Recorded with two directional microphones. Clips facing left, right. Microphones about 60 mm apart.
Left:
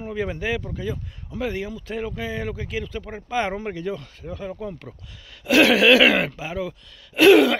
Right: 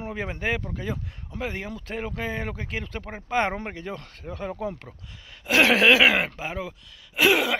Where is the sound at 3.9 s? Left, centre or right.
Right.